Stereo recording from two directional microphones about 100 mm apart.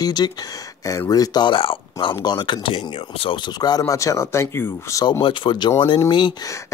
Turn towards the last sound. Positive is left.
turn(degrees=55)  # may be behind; listen again after turning